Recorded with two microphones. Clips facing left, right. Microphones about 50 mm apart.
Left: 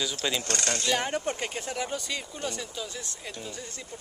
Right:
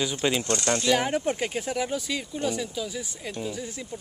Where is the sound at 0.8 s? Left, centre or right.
Centre.